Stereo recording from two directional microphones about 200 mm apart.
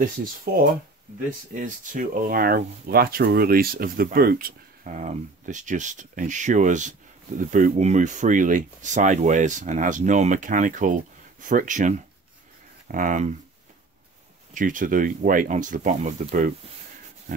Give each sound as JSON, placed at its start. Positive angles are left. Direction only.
{"t": 1.5, "sound": "speech", "side_deg": -40}
{"t": 14.5, "sound": "speech", "side_deg": -40}